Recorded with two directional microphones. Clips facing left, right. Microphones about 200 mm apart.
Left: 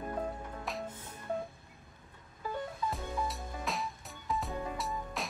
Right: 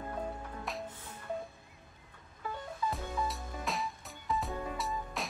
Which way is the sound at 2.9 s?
Centre (ahead or behind).